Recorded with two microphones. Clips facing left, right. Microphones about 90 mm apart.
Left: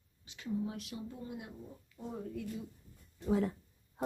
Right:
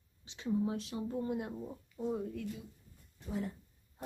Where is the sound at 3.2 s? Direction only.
90° left.